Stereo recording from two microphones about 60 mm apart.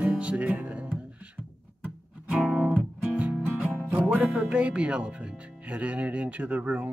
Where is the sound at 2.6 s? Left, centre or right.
Right.